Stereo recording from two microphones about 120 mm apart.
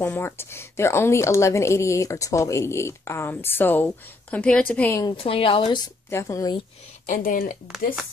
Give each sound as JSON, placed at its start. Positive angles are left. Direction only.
{"t": 0.0, "sound": "a woman's voice", "side_deg": 20}
{"t": 5.1, "sound": "a woman's voice", "side_deg": 50}
{"t": 6.0, "sound": "a woman's voice", "side_deg": 25}
{"t": 7.6, "sound": "speech", "side_deg": -5}